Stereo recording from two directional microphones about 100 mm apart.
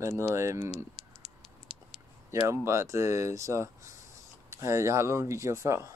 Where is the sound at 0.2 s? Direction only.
35° right (ahead or behind).